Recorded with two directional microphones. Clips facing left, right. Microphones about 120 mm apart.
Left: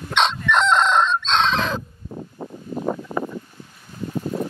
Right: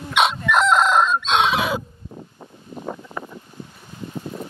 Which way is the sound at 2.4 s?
70° left (ahead or behind).